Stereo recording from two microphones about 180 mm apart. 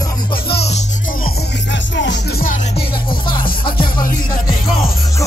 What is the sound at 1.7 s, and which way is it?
Music, 80° left.